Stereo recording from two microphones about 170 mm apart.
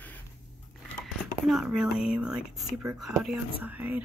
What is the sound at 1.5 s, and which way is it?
Speech, centre (ahead or behind).